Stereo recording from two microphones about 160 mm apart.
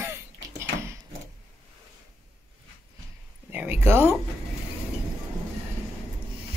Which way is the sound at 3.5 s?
10° right (ahead or behind).